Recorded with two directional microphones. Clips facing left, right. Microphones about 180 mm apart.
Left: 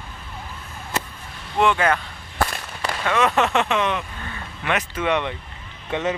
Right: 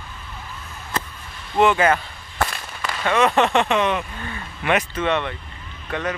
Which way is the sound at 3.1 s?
Centre (ahead or behind).